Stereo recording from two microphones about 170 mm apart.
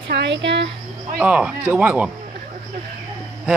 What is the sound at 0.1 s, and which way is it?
Speech, 90° right.